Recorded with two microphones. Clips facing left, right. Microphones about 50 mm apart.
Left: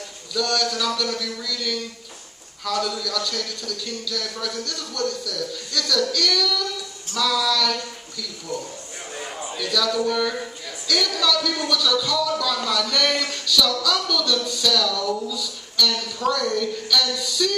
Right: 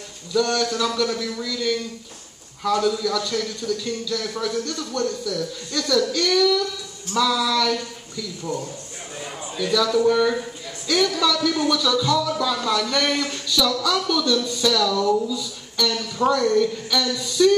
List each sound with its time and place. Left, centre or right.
0.3 s speech: right
9.6 s speech: right